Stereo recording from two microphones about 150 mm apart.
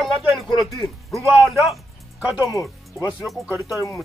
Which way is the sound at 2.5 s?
20° left (ahead or behind).